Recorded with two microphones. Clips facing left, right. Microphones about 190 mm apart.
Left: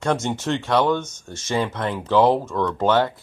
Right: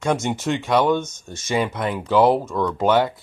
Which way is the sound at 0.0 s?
15° right (ahead or behind).